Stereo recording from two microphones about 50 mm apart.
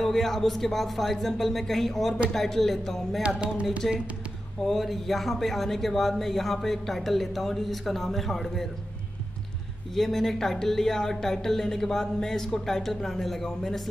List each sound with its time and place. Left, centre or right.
0.0 s speech: centre
3.2 s a sound: right
3.8 s speech: centre
9.9 s speech: centre